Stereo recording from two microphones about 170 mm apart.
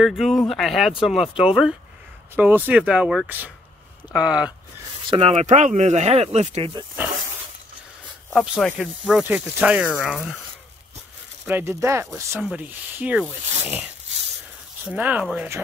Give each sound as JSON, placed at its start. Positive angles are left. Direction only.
{"t": 0.0, "sound": "speech", "side_deg": 0}
{"t": 5.1, "sound": "speech", "side_deg": -35}
{"t": 8.4, "sound": "speech", "side_deg": 0}
{"t": 11.4, "sound": "speech", "side_deg": -15}
{"t": 14.9, "sound": "speech", "side_deg": -10}